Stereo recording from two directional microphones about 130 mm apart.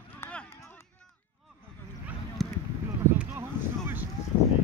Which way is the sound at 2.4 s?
Centre (ahead or behind).